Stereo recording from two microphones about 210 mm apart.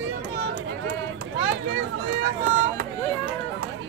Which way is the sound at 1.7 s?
55° right (ahead or behind).